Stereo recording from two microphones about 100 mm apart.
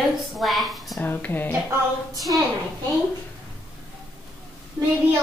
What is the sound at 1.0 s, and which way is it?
Speech, 20° left (ahead or behind).